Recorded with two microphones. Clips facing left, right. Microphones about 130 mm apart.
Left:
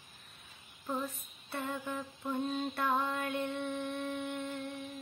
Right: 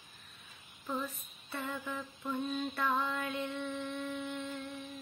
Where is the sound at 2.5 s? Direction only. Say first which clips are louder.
Even; 40° left (ahead or behind).